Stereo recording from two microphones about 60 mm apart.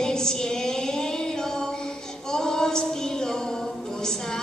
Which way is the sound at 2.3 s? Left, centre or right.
Centre.